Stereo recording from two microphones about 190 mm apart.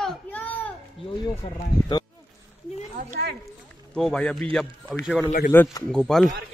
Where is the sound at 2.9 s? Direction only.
45° right (ahead or behind).